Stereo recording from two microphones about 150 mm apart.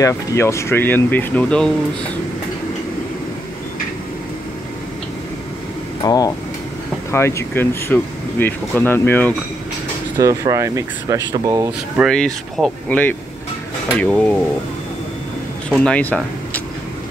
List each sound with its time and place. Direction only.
0.0 s speech: 20° left (ahead or behind)
6.0 s speech: 25° left (ahead or behind)
10.1 s speech: 20° right (ahead or behind)
12.0 s speech: 5° left (ahead or behind)
15.7 s speech: 5° left (ahead or behind)